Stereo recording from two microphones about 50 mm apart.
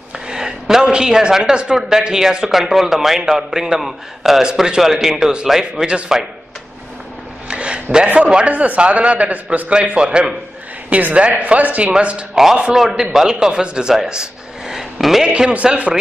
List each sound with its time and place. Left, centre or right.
0.3 s speech: centre
7.4 s a sound: right
8.5 s a man's voice: right
10.9 s a man's voice: right
12.7 s a man's voice: centre
15.2 s a man's voice: centre